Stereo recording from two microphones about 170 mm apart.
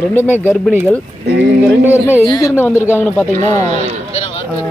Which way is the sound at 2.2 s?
20° left (ahead or behind).